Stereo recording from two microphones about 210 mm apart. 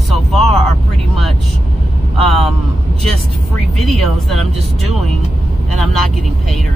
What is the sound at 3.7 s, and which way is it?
Speech, centre (ahead or behind).